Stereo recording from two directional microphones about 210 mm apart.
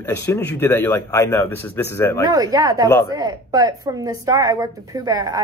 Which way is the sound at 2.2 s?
20° right (ahead or behind).